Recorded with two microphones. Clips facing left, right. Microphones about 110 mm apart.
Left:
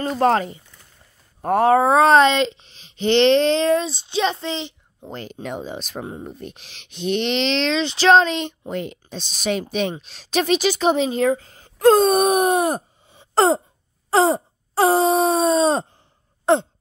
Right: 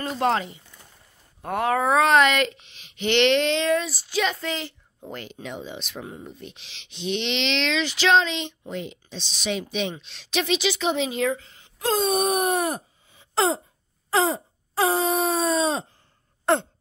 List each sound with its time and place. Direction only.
0.0 s speech: 40° left (ahead or behind); by 5.2 s 20° left (ahead or behind)
5.2 s speech: 45° left (ahead or behind)
6.2 s speech: 50° left (ahead or behind)
11.8 s speech: 55° left (ahead or behind)
12.2 s a sound: 30° left (ahead or behind)
14.1 s speech: 30° left (ahead or behind)